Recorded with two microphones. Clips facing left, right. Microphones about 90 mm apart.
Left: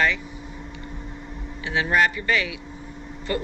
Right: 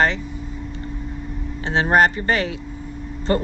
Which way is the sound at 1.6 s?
45° right (ahead or behind).